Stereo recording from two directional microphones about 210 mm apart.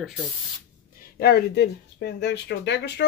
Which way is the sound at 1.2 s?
50° left (ahead or behind).